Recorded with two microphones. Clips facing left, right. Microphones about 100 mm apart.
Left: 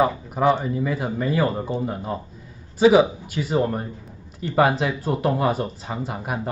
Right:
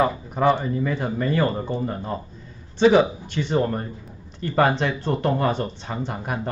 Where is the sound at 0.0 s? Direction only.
5° left (ahead or behind).